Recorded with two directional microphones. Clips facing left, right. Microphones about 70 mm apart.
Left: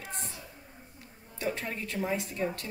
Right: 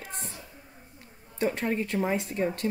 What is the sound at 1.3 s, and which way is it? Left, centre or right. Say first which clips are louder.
A woman's voice: right 7 dB; right.